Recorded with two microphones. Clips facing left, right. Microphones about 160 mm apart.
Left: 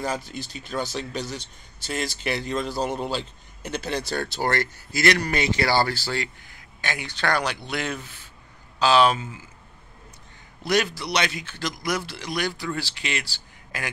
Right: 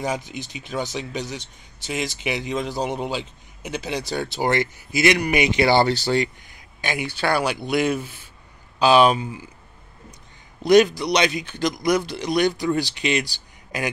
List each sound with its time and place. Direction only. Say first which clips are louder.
0.0 s speech: right 2 dB; 15° right (ahead or behind)
10.6 s a man's voice: right 9 dB; 20° right (ahead or behind)